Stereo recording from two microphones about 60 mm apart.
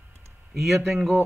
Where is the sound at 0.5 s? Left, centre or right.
Centre.